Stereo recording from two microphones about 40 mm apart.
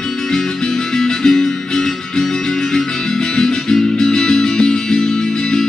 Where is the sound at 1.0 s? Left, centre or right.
Centre.